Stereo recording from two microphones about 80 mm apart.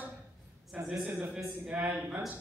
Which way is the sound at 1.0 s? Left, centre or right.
Right.